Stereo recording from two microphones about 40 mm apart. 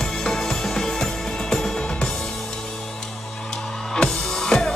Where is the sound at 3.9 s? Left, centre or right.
Centre.